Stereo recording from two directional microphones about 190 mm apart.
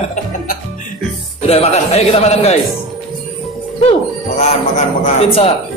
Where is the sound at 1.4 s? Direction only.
35° left (ahead or behind).